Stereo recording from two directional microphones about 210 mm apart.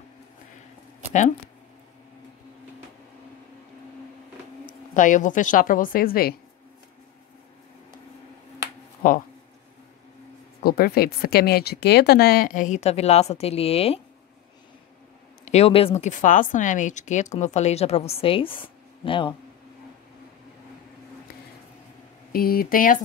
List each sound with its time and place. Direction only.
4.6 s speech: 40° left (ahead or behind)
10.6 s speech: 45° left (ahead or behind); by 14.0 s 30° left (ahead or behind)
15.4 s speech: 30° left (ahead or behind)
22.3 s speech: 45° left (ahead or behind)